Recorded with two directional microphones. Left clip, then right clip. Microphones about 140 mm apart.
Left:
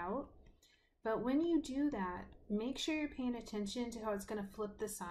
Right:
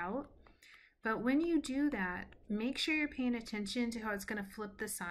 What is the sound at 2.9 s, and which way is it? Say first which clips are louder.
Speech: right 6 dB; 15° right (ahead or behind).